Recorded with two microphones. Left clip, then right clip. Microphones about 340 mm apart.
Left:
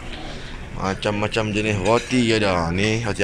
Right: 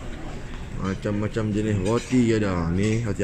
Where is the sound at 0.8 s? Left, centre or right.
Centre.